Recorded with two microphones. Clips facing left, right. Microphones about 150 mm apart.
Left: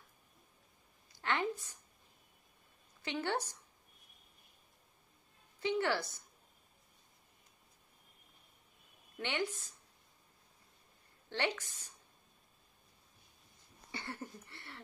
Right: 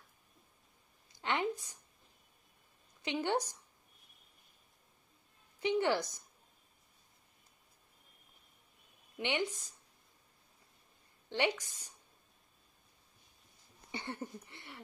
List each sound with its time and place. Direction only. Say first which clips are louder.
1.1 s a woman's voice: right 1 dB; 15° right (ahead or behind)
3.0 s speech: right 3 dB; 15° right (ahead or behind)
5.6 s a woman's voice: right 3 dB; 20° right (ahead or behind)
9.2 s a woman's voice: right 2 dB; 15° right (ahead or behind)
11.2 s a woman's voice: right 3 dB; 15° right (ahead or behind)
13.9 s a sound: right 3 dB; 20° right (ahead or behind)